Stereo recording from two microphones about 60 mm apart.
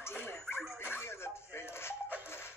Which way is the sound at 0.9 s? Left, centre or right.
Left.